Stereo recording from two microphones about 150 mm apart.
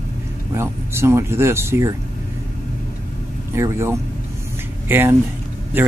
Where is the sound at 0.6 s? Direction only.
15° right (ahead or behind).